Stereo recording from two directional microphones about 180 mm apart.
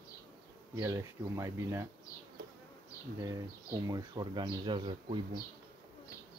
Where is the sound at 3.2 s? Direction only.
20° right (ahead or behind).